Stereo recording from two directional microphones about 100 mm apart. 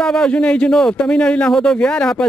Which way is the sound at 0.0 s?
5° left (ahead or behind).